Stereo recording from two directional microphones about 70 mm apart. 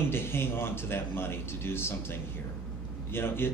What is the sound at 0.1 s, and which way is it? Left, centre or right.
A man's voice, left.